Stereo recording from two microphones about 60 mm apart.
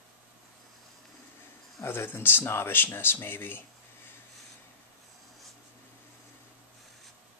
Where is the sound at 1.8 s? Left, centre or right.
Left.